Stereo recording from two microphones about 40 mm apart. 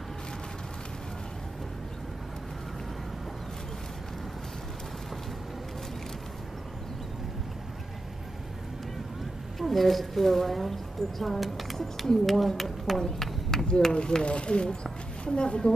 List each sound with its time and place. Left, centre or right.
9.6 s speech: centre
13.0 s a sound: centre
13.7 s speech: centre